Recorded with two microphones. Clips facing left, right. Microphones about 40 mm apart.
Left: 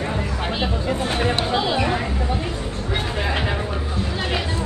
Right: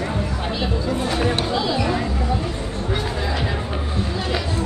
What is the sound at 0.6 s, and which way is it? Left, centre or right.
Chatter, left.